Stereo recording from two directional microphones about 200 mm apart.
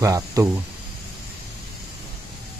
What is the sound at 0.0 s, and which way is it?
Speech, 15° right (ahead or behind).